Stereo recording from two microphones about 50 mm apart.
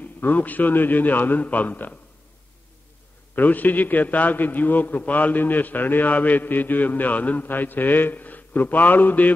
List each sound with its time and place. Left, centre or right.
0.0 s a man's voice: left
3.3 s a man's voice: left